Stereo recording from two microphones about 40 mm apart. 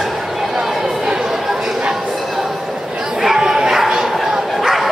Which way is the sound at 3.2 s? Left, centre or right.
Centre.